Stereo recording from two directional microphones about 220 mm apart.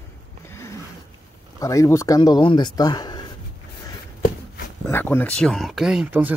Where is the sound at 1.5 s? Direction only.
15° left (ahead or behind).